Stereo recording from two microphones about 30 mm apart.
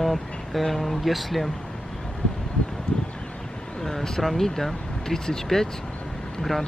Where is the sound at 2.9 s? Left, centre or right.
Left.